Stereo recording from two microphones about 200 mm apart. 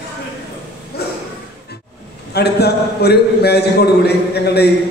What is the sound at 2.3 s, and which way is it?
A man's voice, 55° left (ahead or behind).